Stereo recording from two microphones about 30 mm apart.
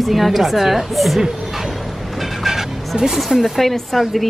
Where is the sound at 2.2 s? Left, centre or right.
Centre.